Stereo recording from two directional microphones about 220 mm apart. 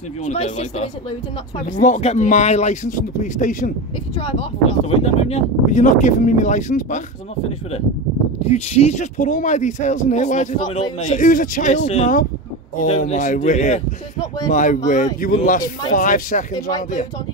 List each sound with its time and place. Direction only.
0.2 s speech: 30° left (ahead or behind)
4.2 s speech: 25° left (ahead or behind)
8.5 s speech: 30° left (ahead or behind)